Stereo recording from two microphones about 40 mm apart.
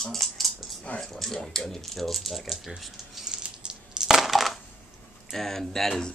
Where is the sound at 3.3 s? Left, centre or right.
Centre.